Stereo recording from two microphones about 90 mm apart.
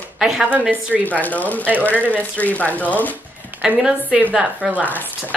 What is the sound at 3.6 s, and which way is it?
A woman's voice, 15° right (ahead or behind).